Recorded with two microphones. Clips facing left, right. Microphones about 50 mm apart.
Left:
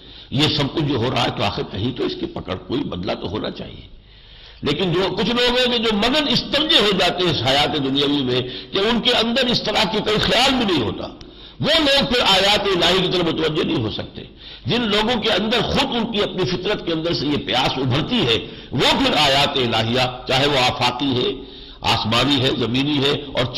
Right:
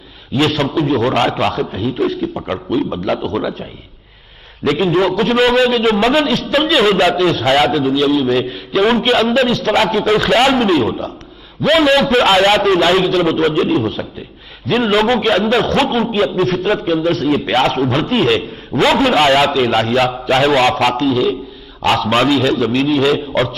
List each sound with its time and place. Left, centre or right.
0.3 s a man's voice: right
2.9 s a man's voice: centre
4.6 s a man's voice: right